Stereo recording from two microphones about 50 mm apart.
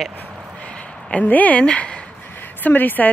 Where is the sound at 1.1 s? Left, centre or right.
Left.